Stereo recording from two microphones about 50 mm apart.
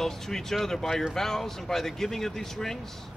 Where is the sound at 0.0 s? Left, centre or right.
Centre.